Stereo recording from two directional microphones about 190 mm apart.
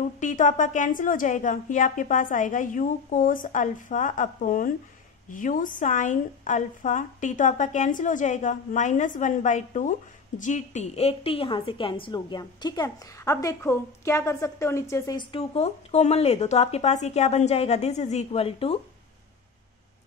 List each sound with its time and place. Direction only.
0.2 s a woman's voice: 40° left (ahead or behind)